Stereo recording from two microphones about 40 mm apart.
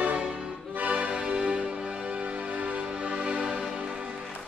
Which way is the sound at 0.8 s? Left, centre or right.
Right.